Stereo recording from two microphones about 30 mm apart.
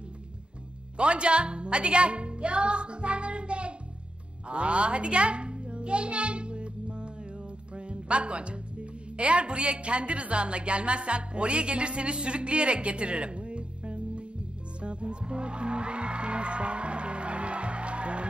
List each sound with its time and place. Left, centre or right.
0.9 s speech: right
4.5 s a sound: right
7.7 s music: right
9.1 s a woman's voice: right
14.8 s music: right